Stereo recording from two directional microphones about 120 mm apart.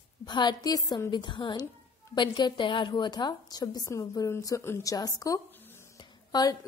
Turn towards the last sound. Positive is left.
turn(degrees=35)  # may be behind; listen again after turning